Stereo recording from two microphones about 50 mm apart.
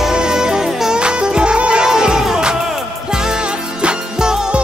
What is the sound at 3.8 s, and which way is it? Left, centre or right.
Music, centre.